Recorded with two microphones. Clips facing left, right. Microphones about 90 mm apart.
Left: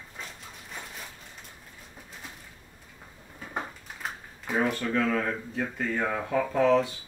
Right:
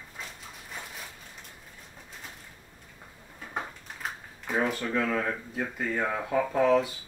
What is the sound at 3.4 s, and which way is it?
Speech, centre (ahead or behind).